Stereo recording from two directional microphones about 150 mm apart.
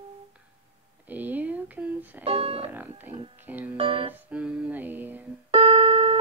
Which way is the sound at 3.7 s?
40° right (ahead or behind).